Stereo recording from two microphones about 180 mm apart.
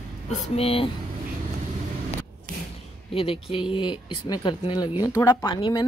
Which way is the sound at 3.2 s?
30° left (ahead or behind).